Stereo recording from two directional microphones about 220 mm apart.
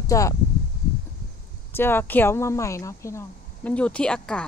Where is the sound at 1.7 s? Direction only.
10° left (ahead or behind).